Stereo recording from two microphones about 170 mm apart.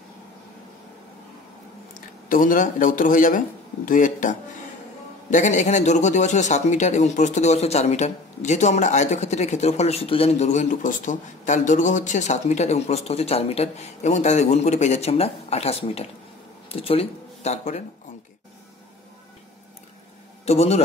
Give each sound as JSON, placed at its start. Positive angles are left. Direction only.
{"t": 2.0, "sound": "speech", "side_deg": 50}
{"t": 20.4, "sound": "a man's voice", "side_deg": 40}